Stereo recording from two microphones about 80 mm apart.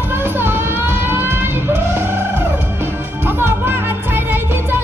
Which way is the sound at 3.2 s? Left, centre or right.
Right.